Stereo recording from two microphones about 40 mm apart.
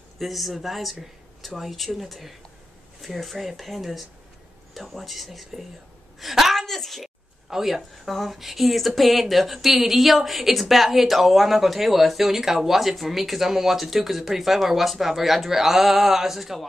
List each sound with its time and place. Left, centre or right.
0.2 s speech: centre
6.1 s a sound: centre
7.4 s speech: centre
8.0 s speech: centre